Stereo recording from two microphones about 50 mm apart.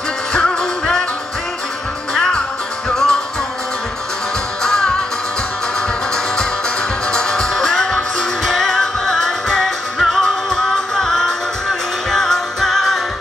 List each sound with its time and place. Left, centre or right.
0.3 s music: centre
2.1 s music: centre
4.6 s music: centre
7.1 s music: centre